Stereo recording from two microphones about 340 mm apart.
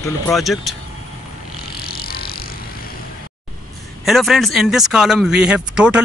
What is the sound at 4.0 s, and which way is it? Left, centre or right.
Speech, centre.